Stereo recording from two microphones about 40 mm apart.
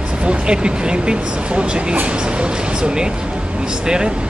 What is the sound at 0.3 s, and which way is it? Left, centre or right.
Speech, right.